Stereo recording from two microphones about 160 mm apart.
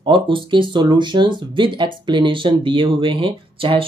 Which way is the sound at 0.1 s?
30° right (ahead or behind).